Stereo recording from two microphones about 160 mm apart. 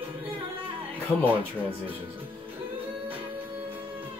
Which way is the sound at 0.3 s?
35° right (ahead or behind).